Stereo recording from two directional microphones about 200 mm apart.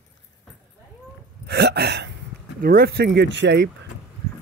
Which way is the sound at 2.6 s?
50° right (ahead or behind).